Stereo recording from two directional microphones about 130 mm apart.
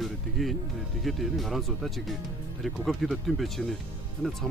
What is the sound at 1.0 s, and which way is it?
Speech, centre (ahead or behind).